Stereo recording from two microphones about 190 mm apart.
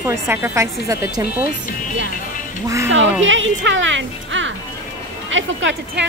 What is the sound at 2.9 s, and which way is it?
Speech, 85° right.